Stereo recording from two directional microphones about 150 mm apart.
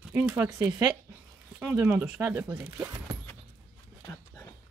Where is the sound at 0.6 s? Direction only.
25° right (ahead or behind).